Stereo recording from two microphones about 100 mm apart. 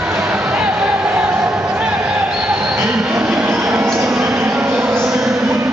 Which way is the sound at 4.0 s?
5° right (ahead or behind).